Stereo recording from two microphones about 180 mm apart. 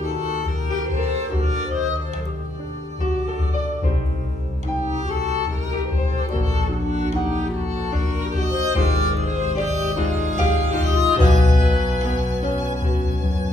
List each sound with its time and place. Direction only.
0.2 s music: 40° right (ahead or behind)
4.8 s music: 40° right (ahead or behind)
6.9 s music: 40° right (ahead or behind)